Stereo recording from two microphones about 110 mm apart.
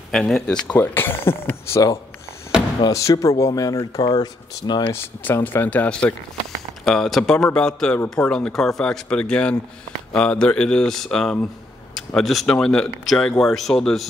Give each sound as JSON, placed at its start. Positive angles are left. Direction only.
{"t": 0.1, "sound": "speech", "side_deg": 5}
{"t": 2.9, "sound": "speech", "side_deg": 30}
{"t": 4.9, "sound": "speech", "side_deg": 20}